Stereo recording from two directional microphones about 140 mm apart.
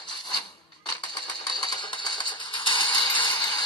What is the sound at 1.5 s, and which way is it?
Typewriter, 30° left (ahead or behind).